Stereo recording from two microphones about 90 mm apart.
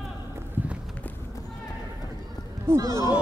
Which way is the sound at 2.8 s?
40° right (ahead or behind).